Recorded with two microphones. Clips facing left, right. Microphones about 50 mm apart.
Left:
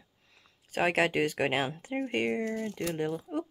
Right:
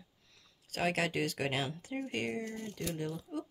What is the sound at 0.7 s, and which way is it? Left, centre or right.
Speech, left.